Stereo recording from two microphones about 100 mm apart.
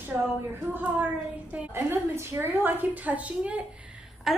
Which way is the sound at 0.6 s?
15° right (ahead or behind).